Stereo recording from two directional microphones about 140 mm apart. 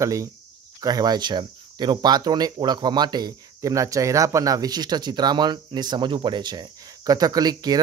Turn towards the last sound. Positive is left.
turn(degrees=-30)  # may be behind; listen again after turning